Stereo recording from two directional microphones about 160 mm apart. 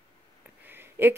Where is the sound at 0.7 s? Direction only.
15° right (ahead or behind).